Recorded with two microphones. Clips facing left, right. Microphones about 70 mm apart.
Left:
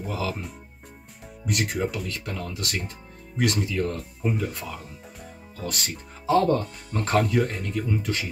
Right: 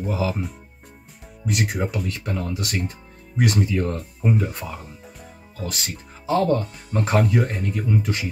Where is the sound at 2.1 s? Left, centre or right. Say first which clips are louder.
Right 5 dB; right.